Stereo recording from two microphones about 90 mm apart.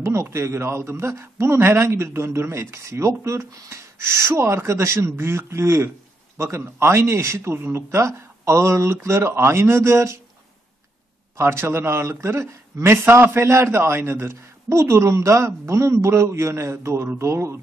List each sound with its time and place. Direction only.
0.0 s a man's voice: 30° right (ahead or behind)
11.3 s a man's voice: 30° right (ahead or behind)